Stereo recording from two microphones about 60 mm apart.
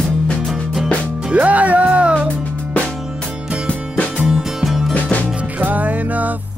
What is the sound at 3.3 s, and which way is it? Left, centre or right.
Music, centre.